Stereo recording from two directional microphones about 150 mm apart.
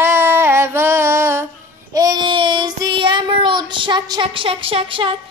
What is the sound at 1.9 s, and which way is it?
Child singing, 25° right (ahead or behind).